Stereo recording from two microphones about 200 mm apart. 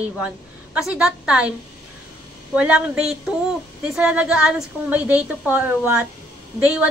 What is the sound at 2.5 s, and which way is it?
A woman's voice, 5° right (ahead or behind).